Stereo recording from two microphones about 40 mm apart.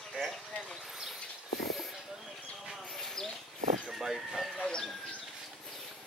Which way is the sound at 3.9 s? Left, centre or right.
Centre.